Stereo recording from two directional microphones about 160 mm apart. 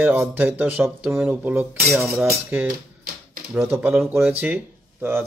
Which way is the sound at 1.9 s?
5° right (ahead or behind).